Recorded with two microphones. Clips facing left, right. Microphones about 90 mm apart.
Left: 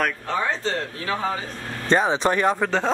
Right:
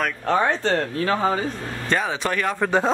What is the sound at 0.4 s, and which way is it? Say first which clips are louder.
Speech: right 3 dB; 50° right (ahead or behind).